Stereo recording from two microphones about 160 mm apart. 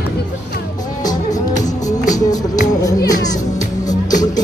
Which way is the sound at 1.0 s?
25° left (ahead or behind).